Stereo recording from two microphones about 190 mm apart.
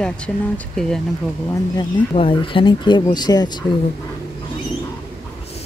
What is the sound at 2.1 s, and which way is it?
Speech, 30° left (ahead or behind).